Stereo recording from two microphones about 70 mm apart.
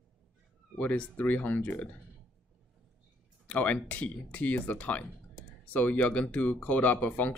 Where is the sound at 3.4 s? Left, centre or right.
Centre.